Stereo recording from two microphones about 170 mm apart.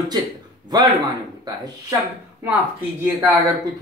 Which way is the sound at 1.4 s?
25° right (ahead or behind).